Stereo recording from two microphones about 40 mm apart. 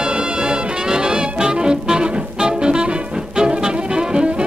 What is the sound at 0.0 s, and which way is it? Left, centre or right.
Music, right.